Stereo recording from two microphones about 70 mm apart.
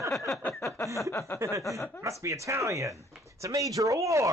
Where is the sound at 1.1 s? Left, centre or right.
Left.